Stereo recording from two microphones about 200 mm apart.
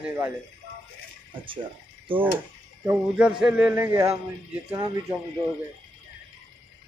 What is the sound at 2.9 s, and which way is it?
A man's voice, 5° right (ahead or behind).